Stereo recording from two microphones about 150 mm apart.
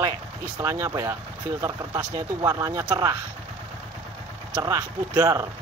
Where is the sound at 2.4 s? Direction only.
20° right (ahead or behind).